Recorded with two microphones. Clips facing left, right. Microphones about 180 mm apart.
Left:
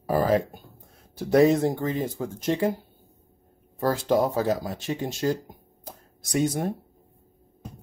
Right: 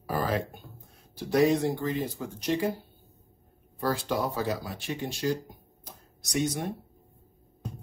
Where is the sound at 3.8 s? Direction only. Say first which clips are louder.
Left 6 dB; 45° left (ahead or behind).